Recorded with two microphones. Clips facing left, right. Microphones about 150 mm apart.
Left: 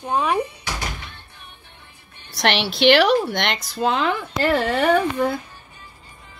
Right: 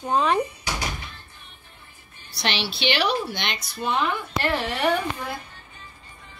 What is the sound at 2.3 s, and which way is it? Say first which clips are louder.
Speech: left 7 dB; 70° left (ahead or behind).